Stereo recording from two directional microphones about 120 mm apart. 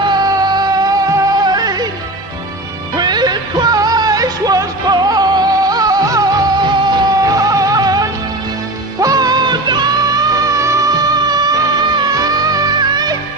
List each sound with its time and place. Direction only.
0.1 s music: 35° right (ahead or behind)
3.0 s music: 35° right (ahead or behind)
11.2 s music: 35° right (ahead or behind)